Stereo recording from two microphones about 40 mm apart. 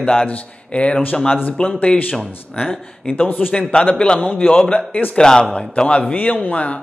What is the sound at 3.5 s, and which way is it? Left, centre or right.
Speech, left.